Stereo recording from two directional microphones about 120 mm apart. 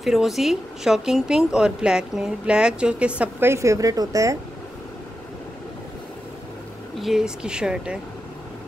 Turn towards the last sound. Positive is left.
turn(degrees=-5)  # may be behind; listen again after turning